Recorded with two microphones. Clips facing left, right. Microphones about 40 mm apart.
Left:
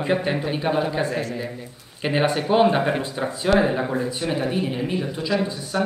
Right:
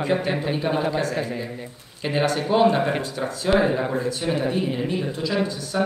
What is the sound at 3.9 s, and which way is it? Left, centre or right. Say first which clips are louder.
A man's voice: even; centre.